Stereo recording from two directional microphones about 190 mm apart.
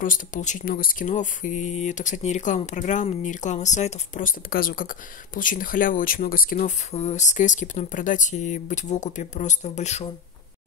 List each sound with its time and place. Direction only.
0.0 s speech: 45° left (ahead or behind)
6.9 s speech: 35° left (ahead or behind)